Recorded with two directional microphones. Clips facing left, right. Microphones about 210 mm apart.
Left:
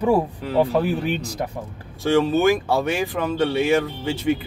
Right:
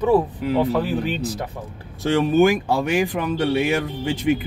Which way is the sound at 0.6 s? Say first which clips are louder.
Left 4 dB; 15° left (ahead or behind).